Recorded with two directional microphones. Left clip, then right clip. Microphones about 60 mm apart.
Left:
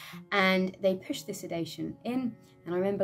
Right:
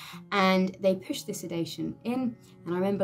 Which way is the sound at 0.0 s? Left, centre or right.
Left.